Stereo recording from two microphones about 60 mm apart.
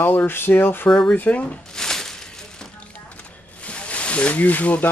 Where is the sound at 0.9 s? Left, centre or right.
Centre.